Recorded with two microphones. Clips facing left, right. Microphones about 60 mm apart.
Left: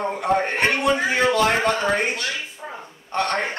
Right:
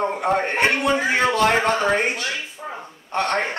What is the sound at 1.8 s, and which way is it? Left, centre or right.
Speech, centre.